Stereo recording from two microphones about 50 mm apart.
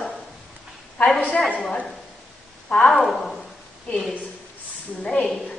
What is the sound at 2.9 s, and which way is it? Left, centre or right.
Speech, centre.